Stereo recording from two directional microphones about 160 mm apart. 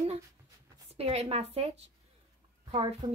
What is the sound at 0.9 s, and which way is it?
Speech, 40° right (ahead or behind).